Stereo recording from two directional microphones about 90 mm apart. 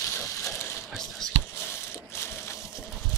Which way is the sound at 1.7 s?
30° left (ahead or behind).